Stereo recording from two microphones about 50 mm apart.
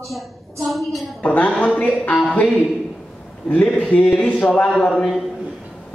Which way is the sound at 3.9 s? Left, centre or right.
Left.